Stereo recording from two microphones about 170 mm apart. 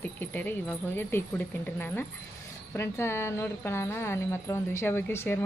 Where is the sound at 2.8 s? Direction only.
15° left (ahead or behind).